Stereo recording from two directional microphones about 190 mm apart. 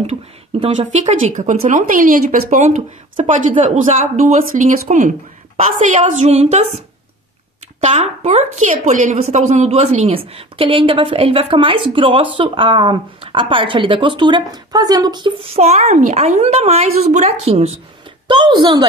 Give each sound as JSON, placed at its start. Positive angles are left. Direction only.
{"t": 0.0, "sound": "a sound", "side_deg": -30}
{"t": 0.9, "sound": "speech", "side_deg": -40}
{"t": 7.8, "sound": "a woman's voice", "side_deg": -35}